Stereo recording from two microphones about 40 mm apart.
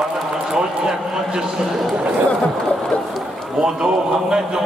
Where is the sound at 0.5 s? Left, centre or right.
Centre.